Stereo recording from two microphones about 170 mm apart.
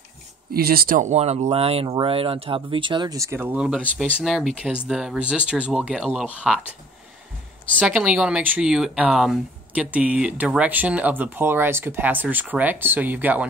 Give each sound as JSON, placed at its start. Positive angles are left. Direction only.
{"t": 0.5, "sound": "speech", "side_deg": -65}
{"t": 7.8, "sound": "speech", "side_deg": -5}